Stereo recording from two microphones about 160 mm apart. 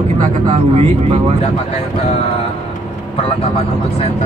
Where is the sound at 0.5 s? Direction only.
40° right (ahead or behind).